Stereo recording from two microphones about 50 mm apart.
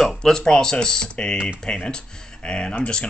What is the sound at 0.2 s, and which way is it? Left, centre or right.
Speech, centre.